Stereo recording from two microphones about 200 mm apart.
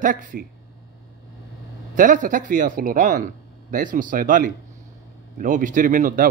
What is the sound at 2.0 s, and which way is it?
A man's voice, 40° right (ahead or behind).